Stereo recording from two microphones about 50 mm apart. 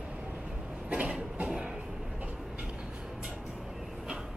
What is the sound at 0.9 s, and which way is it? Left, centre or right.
Train, right.